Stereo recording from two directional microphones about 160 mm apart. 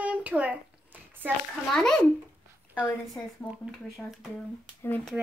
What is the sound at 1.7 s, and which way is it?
Speech, 5° left (ahead or behind).